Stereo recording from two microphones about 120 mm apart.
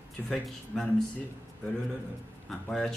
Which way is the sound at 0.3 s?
5° left (ahead or behind).